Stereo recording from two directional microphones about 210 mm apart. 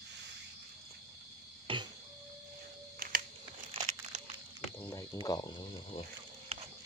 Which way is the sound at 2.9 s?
45° right (ahead or behind).